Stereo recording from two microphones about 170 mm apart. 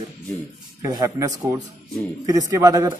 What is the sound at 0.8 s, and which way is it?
A man's voice, 20° right (ahead or behind).